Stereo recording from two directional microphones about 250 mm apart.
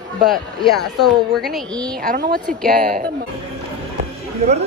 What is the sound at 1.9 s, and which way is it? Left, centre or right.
A woman's voice, right.